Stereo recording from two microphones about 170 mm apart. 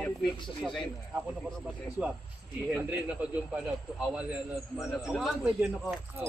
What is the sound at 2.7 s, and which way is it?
A man's voice, 5° right (ahead or behind).